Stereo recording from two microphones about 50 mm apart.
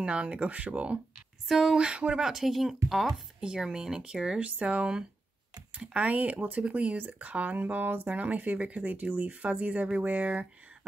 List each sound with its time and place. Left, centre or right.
0.0 s speech: right
1.5 s speech: centre
1.8 s speech: centre
4.4 s speech: right